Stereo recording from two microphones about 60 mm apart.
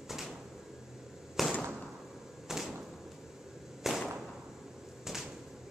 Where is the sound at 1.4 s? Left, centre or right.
Centre.